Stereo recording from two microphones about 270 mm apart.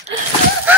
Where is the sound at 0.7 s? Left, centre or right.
Centre.